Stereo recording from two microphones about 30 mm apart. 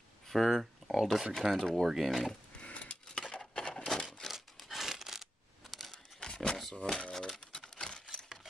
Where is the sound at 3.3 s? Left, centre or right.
Left.